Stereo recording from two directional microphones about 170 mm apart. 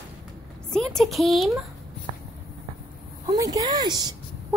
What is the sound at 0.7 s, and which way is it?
Speech, 5° left (ahead or behind).